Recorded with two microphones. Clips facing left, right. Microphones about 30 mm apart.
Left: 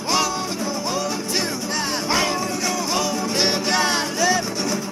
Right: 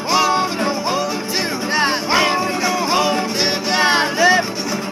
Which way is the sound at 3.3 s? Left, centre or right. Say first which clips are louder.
Right 1 dB; centre.